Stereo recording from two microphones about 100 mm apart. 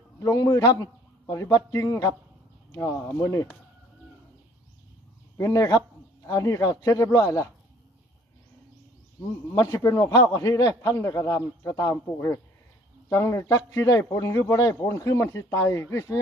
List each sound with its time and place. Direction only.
0.2 s speech: 30° left (ahead or behind)
5.4 s speech: 35° left (ahead or behind)
9.5 s speech: 30° left (ahead or behind)